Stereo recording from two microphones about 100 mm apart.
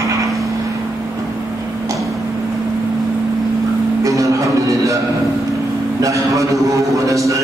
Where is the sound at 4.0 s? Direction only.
30° right (ahead or behind).